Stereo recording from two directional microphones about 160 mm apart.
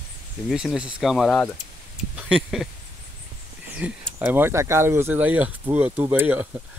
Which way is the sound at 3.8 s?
10° right (ahead or behind).